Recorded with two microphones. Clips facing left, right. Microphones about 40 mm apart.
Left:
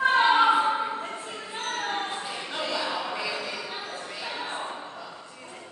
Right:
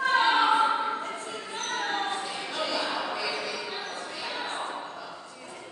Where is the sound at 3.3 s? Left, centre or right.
Centre.